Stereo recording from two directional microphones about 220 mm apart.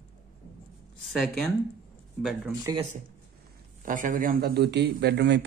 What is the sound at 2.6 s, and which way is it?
Speech, 20° right (ahead or behind).